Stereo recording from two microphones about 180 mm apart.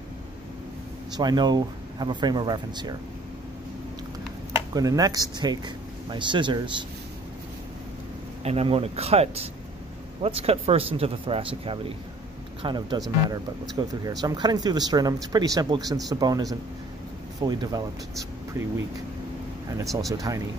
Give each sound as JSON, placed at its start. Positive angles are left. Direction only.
{"t": 1.1, "sound": "speech", "side_deg": -25}
{"t": 4.7, "sound": "speech", "side_deg": -20}
{"t": 8.5, "sound": "speech", "side_deg": -35}
{"t": 20.1, "sound": "speech", "side_deg": -20}